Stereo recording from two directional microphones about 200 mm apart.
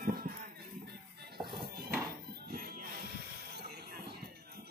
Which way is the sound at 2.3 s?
50° right (ahead or behind).